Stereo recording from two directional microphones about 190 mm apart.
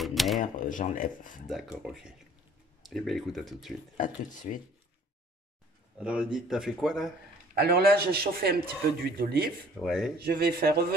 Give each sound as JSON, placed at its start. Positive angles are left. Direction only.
{"t": 0.0, "sound": "cash register", "side_deg": 0}
{"t": 0.4, "sound": "speech", "side_deg": 45}
{"t": 1.5, "sound": "speech", "side_deg": 0}
{"t": 3.9, "sound": "speech", "side_deg": 40}
{"t": 5.9, "sound": "speech", "side_deg": -5}
{"t": 7.5, "sound": "a man's voice", "side_deg": -55}
{"t": 9.8, "sound": "speech", "side_deg": 0}
{"t": 10.1, "sound": "a man's voice", "side_deg": -55}